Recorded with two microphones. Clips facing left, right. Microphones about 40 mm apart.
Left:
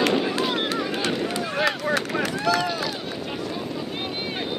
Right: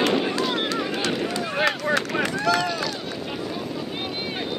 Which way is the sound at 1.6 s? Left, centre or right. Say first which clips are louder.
Right 2 dB; centre.